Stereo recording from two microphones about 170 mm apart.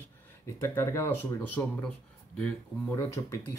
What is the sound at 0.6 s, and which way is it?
Speech, 15° left (ahead or behind).